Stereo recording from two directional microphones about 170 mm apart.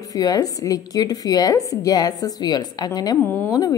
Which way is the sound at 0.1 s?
20° left (ahead or behind).